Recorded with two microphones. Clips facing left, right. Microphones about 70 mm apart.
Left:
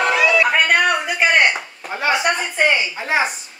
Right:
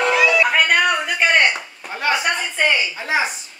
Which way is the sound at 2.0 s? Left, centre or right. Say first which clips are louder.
Left 2 dB; centre.